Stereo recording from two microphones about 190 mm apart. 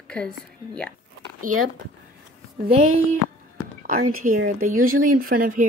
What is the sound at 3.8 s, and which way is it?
Speech, 45° right (ahead or behind).